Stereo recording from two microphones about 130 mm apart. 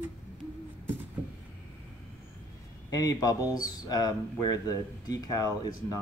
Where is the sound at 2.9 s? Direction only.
30° left (ahead or behind).